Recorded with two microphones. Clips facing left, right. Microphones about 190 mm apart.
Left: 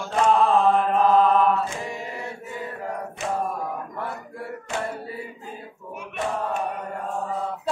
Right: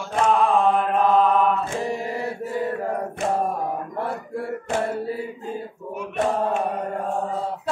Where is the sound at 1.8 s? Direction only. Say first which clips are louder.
Right 6 dB; 30° right (ahead or behind).